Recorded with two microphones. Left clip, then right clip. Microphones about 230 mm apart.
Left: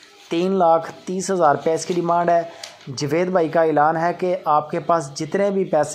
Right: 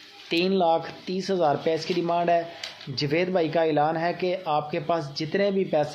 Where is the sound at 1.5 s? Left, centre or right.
Centre.